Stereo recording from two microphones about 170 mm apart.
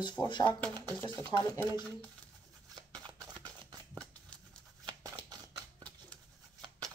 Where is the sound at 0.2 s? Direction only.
25° left (ahead or behind).